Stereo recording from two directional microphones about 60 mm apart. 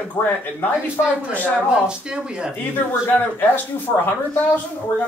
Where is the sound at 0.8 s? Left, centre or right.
Centre.